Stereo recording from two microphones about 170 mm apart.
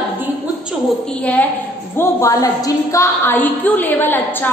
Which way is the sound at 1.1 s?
5° left (ahead or behind).